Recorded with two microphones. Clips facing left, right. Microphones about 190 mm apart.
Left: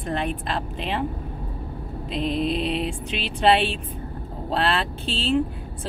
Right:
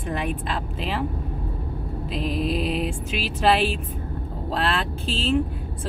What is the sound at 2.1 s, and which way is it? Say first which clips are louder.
Speech: left 1 dB; 5° right (ahead or behind).